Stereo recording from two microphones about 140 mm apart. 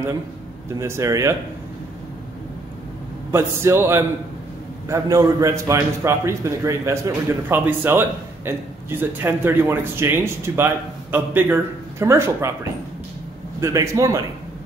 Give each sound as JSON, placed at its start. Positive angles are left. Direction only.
{"t": 0.7, "sound": "a man's voice", "side_deg": -20}
{"t": 3.3, "sound": "a man's voice", "side_deg": -20}
{"t": 13.6, "sound": "a man's voice", "side_deg": -20}